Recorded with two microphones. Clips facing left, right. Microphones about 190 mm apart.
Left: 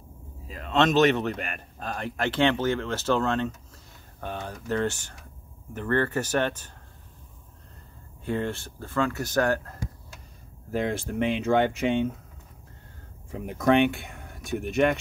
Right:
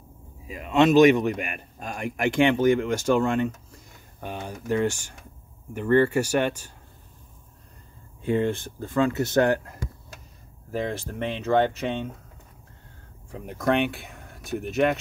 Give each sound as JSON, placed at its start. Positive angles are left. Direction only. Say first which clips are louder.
{"t": 0.5, "sound": "speech", "louder": "right 4 dB", "side_deg": -10}
{"t": 8.2, "sound": "speech", "louder": "right 5 dB", "side_deg": -15}
{"t": 10.7, "sound": "speech", "louder": "left 1 dB", "side_deg": 5}
{"t": 13.3, "sound": "speech", "louder": "left 2 dB", "side_deg": 0}